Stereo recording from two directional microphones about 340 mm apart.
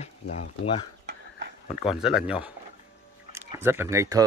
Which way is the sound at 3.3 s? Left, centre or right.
Centre.